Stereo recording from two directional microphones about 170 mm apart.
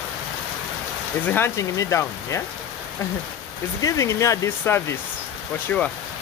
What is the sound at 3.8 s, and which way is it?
Speech, 20° left (ahead or behind).